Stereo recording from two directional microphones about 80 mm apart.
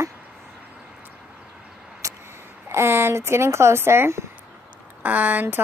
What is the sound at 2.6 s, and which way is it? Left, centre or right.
Speech, right.